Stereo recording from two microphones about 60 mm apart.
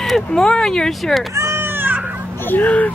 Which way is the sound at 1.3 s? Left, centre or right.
Right.